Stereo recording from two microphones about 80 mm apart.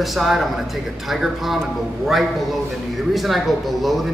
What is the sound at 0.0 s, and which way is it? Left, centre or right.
A man's voice, centre.